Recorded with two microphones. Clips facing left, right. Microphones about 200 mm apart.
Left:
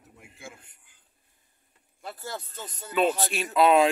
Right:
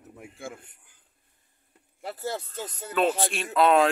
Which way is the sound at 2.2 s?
25° right (ahead or behind).